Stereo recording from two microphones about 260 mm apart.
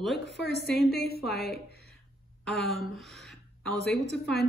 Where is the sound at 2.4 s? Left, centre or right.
Centre.